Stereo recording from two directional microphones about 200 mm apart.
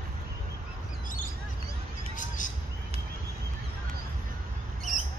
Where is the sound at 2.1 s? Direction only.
40° left (ahead or behind).